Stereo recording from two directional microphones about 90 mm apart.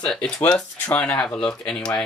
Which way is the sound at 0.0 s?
10° left (ahead or behind).